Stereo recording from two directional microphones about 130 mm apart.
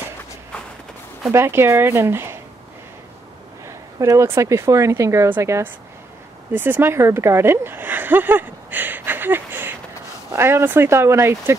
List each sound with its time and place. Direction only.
1.3 s speech: 20° right (ahead or behind)
4.0 s speech: 25° right (ahead or behind)